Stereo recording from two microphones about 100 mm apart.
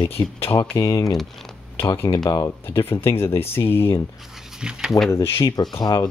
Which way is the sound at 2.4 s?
25° left (ahead or behind).